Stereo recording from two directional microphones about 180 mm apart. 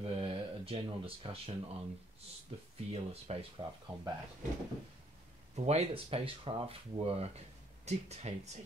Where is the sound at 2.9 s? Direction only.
35° right (ahead or behind).